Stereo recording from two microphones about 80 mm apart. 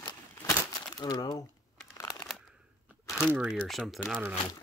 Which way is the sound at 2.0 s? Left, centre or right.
Left.